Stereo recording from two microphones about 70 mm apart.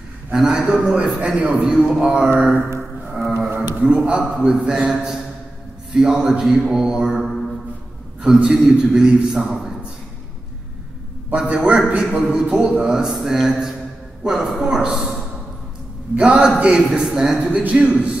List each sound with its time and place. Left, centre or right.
0.3 s a man's voice: centre
3.3 s a sound: right
3.8 s a man's voice: centre
11.2 s a man's voice: centre
16.2 s a man's voice: centre